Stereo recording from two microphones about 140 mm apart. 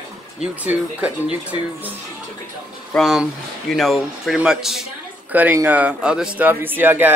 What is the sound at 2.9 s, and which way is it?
Speech, centre (ahead or behind).